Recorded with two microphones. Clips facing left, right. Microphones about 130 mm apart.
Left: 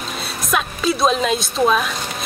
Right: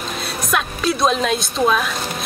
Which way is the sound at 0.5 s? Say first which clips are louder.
Left 1 dB; centre (ahead or behind).